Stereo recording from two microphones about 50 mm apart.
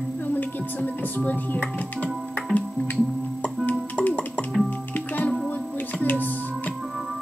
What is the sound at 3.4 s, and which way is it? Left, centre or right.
Music, left.